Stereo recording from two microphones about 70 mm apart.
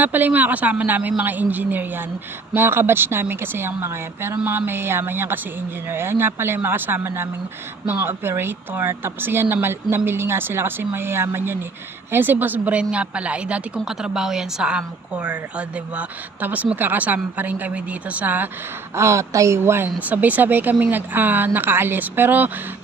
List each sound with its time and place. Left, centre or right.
0.0 s a woman's voice: right
18.9 s speech: right
20.0 s speech: right